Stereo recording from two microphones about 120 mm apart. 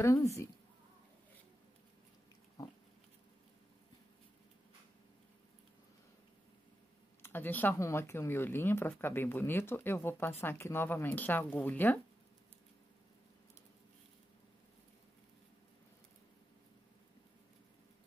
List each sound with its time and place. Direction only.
0.0 s speech: 25° left (ahead or behind)
7.2 s speech: 20° left (ahead or behind)